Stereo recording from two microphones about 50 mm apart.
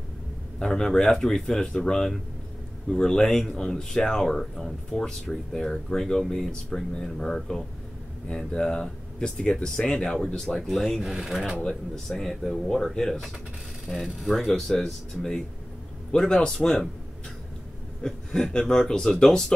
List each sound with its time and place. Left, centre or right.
0.6 s speech: centre
11.0 s speech: centre
11.9 s speech: centre
16.1 s speech: centre
18.0 s speech: centre